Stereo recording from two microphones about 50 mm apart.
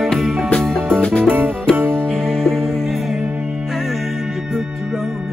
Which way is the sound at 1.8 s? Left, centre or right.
Right.